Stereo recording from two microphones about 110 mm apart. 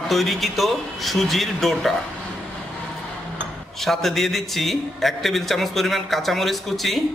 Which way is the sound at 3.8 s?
Centre (ahead or behind).